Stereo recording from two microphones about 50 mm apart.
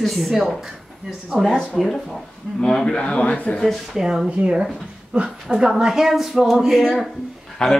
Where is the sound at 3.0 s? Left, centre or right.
Left.